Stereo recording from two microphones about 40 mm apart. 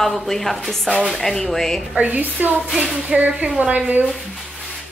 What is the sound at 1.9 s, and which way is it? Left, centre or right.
A woman's voice, right.